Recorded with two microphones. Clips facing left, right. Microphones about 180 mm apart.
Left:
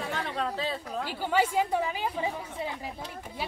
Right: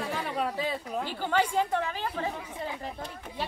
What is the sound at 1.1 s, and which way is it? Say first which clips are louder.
A woman's voice: left 1 dB; 10° left (ahead or behind).